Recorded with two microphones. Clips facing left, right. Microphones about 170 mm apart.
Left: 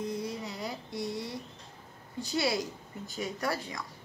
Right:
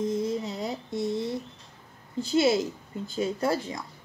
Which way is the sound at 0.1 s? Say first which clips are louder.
Right 7 dB; 25° right (ahead or behind).